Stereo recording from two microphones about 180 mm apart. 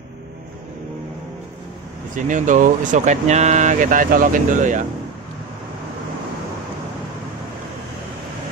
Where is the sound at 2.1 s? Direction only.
45° right (ahead or behind).